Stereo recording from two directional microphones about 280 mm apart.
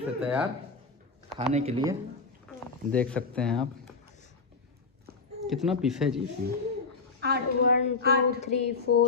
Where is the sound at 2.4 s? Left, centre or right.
Centre.